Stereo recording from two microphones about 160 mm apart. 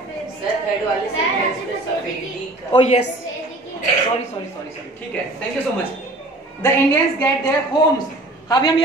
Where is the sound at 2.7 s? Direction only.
40° left (ahead or behind).